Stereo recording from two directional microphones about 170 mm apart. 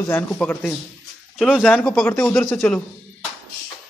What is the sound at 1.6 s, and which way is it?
Speech, 5° left (ahead or behind).